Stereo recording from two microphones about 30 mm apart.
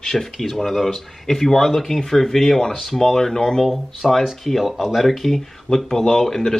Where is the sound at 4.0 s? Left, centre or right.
Centre.